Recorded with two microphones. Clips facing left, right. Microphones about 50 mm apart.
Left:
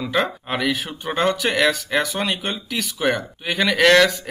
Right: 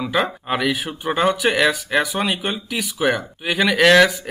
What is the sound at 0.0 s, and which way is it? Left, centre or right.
Speech, centre.